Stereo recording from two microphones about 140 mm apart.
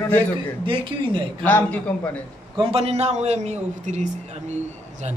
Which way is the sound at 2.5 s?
45° right (ahead or behind).